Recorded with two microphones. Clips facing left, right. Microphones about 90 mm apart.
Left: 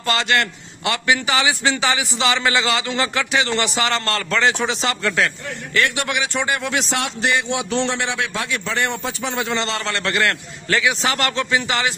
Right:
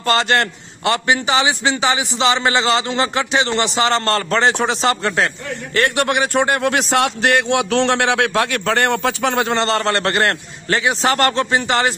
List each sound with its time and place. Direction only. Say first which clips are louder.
0.0 s a man's voice: right 3 dB; 40° right (ahead or behind)